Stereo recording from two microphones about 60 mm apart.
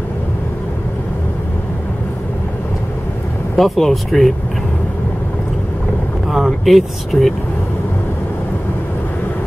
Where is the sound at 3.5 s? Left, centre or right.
Centre.